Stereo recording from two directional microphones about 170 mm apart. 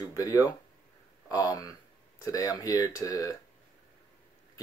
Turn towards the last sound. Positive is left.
turn(degrees=20)  # may be behind; listen again after turning